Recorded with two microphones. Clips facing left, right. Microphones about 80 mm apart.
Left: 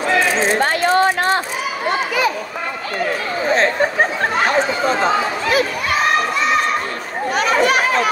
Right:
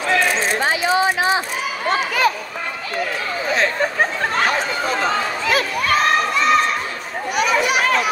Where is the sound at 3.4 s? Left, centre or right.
Left.